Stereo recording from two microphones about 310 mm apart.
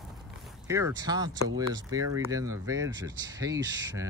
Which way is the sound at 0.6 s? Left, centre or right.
Centre.